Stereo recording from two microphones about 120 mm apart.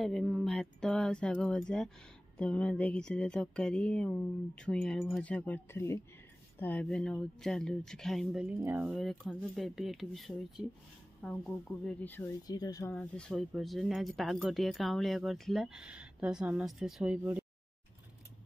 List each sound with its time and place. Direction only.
0.0 s speech: 5° left (ahead or behind)
8.5 s speech: 15° right (ahead or behind)
8.9 s speech: centre (ahead or behind)
12.4 s speech: 30° left (ahead or behind)
12.9 s speech: 10° left (ahead or behind)
17.2 s speech: 15° right (ahead or behind)